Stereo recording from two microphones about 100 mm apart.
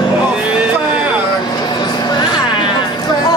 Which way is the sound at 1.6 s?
45° left (ahead or behind).